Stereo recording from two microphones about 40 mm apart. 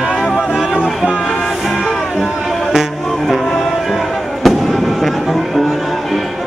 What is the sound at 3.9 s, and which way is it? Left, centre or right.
Fireworks, centre.